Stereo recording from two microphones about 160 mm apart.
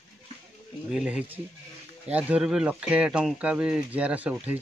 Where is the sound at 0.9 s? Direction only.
5° right (ahead or behind).